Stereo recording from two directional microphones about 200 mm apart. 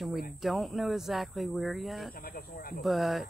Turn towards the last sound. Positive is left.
turn(degrees=0)  # may be behind; listen again after turning